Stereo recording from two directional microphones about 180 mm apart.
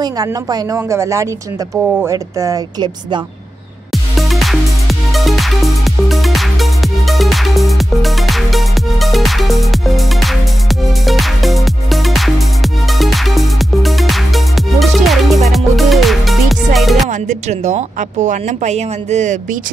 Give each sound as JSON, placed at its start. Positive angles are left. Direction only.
{"t": 0.0, "sound": "a woman's voice", "side_deg": -20}
{"t": 3.9, "sound": "music", "side_deg": 0}
{"t": 17.1, "sound": "a woman's voice", "side_deg": -40}